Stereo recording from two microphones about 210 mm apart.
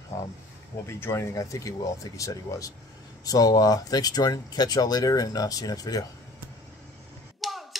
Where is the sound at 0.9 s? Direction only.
10° left (ahead or behind).